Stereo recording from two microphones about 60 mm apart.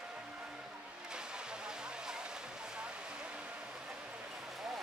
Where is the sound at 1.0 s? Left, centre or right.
Centre.